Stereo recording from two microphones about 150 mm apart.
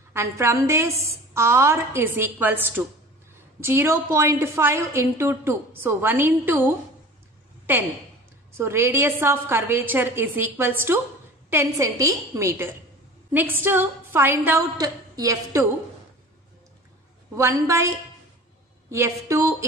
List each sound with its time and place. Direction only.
0.1 s a woman's voice: 20° right (ahead or behind)
8.5 s a woman's voice: 15° right (ahead or behind)
17.4 s a woman's voice: 20° right (ahead or behind)